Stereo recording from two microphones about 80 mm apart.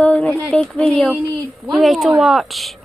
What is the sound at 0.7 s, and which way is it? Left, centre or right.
Speech, centre.